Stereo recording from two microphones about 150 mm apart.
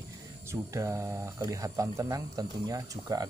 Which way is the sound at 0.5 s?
20° right (ahead or behind).